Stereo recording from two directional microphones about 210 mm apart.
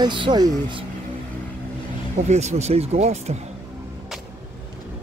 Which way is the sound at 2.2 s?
30° right (ahead or behind).